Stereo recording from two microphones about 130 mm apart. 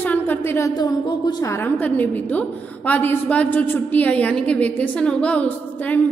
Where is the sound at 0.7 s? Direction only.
35° left (ahead or behind).